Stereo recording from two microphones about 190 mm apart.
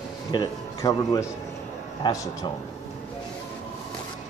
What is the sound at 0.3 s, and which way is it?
A man's voice, 20° left (ahead or behind).